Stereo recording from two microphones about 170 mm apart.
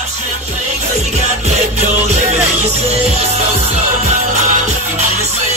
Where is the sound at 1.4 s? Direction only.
40° right (ahead or behind).